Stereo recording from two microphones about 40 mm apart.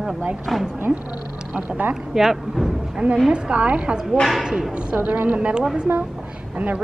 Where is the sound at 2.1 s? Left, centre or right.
Centre.